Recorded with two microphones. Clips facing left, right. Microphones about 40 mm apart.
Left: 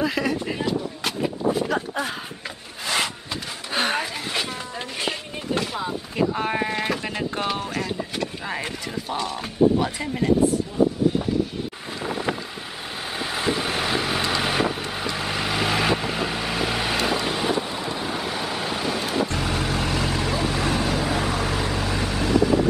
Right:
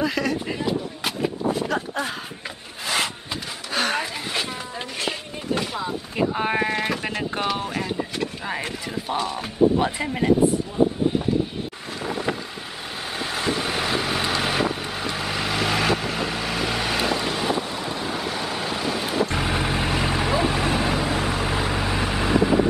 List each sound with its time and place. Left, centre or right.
0.0 s a sound: centre
3.7 s a sound: centre
4.0 s a sound: centre
5.0 s sheep: centre
7.4 s clip-clop: centre
9.1 s speech: centre
12.0 s boat: centre
13.2 s vehicle: centre
19.2 s vehicle: centre